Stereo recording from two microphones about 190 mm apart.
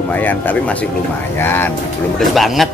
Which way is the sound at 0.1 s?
10° left (ahead or behind).